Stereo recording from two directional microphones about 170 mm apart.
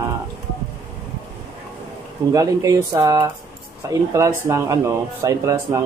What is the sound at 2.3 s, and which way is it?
Speech, 20° right (ahead or behind).